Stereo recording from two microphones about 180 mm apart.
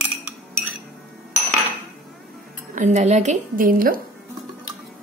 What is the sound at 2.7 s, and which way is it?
A woman's voice, 40° right (ahead or behind).